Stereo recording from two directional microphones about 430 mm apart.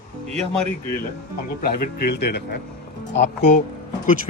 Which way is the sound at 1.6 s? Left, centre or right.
Left.